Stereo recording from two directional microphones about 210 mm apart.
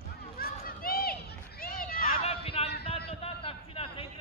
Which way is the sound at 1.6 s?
45° left (ahead or behind).